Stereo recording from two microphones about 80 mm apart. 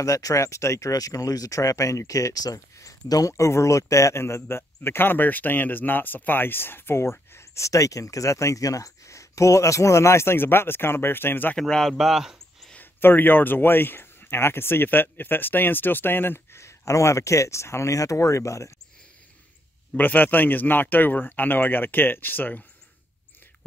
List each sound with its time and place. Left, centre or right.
0.0 s speech: left
11.5 s speech: centre
12.7 s a man's voice: left
20.0 s a man's voice: left